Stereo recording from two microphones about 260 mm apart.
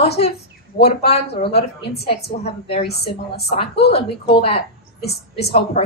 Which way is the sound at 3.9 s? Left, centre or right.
Left.